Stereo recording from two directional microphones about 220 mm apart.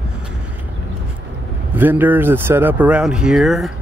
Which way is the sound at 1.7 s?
10° right (ahead or behind).